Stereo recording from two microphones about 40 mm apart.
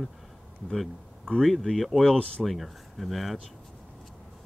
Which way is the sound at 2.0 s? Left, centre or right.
Left.